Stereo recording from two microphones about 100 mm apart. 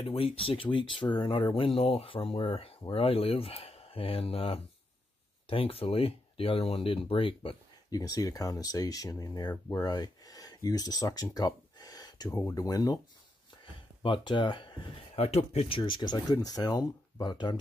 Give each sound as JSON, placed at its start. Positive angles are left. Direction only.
{"t": 0.0, "sound": "speech", "side_deg": 70}
{"t": 7.9, "sound": "speech", "side_deg": 40}
{"t": 9.8, "sound": "speech", "side_deg": 40}
{"t": 11.3, "sound": "gasp", "side_deg": 40}
{"t": 12.3, "sound": "speech", "side_deg": 35}
{"t": 14.0, "sound": "speech", "side_deg": 55}
{"t": 15.1, "sound": "speech", "side_deg": 90}